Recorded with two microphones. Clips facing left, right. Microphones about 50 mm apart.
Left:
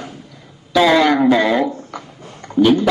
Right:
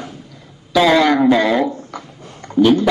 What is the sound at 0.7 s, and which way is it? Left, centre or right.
A man's voice, centre.